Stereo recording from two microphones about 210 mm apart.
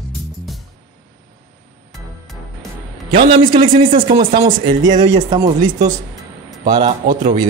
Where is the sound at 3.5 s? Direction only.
25° right (ahead or behind).